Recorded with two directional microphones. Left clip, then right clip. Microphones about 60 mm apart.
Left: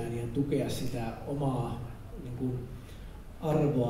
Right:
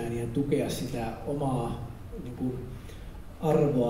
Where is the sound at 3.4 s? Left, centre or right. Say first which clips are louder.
Right 5 dB; centre.